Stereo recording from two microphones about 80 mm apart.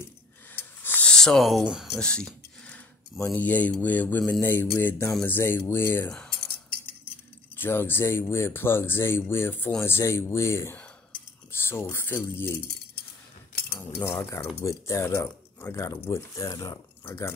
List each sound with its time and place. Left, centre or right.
0.6 s a sound: left
1.0 s a sound: centre
1.6 s speech: centre
1.9 s a sound: centre
3.3 s speech: left
6.0 s cutlery: centre
7.5 s speech: left
13.9 s speech: left
14.3 s speech: left